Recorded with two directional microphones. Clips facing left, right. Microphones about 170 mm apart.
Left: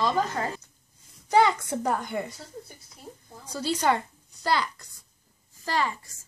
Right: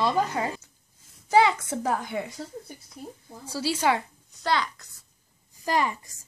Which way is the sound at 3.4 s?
5° right (ahead or behind).